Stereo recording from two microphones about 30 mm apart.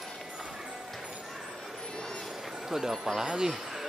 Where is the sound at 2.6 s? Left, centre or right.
Centre.